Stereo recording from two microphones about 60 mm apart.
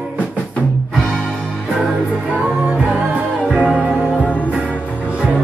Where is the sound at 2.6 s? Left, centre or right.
Centre.